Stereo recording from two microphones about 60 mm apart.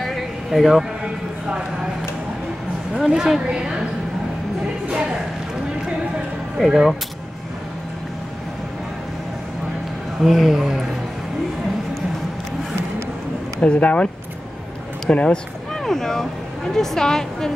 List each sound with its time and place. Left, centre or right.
0.0 s a sound: centre
3.1 s a woman's voice: centre
6.6 s a man's voice: centre
10.2 s a man's voice: centre
13.6 s speech: left
15.0 s speech: centre
15.7 s speech: centre